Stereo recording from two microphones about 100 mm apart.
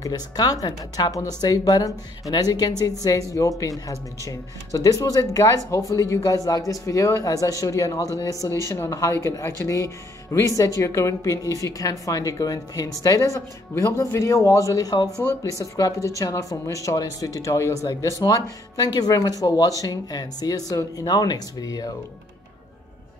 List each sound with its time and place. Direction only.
0.0 s speech: 40° left (ahead or behind)